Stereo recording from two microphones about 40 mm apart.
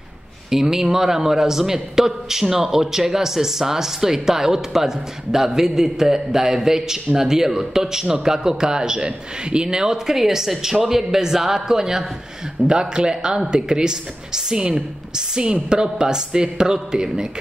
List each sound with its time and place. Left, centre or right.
0.5 s speech: centre
9.8 s a woman's voice: centre